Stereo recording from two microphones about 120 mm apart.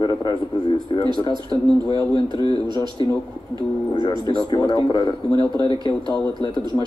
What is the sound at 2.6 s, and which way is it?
Speech, 40° right (ahead or behind).